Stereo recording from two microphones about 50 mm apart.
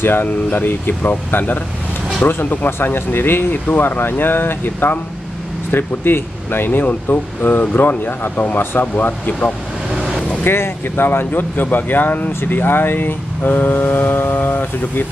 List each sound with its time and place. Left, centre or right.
0.0 s speech: left
9.9 s vehicle: centre
10.4 s speech: left